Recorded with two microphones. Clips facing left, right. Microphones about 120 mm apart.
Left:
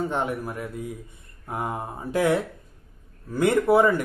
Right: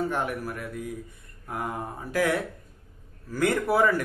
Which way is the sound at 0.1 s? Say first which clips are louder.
Left 2 dB; 25° left (ahead or behind).